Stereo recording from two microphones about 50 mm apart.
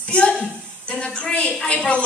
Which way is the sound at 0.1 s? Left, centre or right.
Left.